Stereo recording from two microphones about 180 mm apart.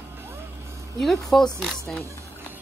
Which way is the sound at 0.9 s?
Centre (ahead or behind).